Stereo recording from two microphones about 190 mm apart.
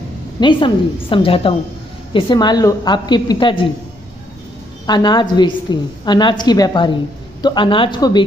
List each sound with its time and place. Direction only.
0.4 s a woman's voice: 25° left (ahead or behind)
4.8 s a woman's voice: 20° left (ahead or behind)